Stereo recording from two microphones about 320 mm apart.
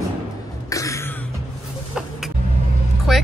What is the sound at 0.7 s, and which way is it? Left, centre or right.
Cough, centre.